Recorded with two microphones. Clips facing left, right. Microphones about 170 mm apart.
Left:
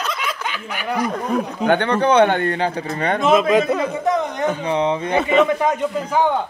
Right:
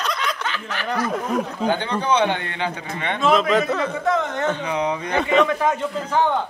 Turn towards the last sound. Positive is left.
turn(degrees=15)  # may be behind; listen again after turning